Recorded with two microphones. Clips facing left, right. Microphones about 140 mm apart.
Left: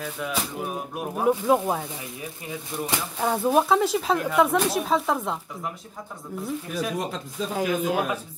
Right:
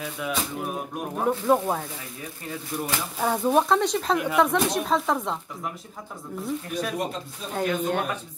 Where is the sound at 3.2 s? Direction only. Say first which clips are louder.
Even; centre (ahead or behind).